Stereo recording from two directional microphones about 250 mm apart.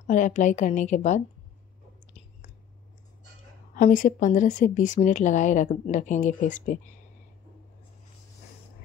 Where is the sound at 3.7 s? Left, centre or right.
Left.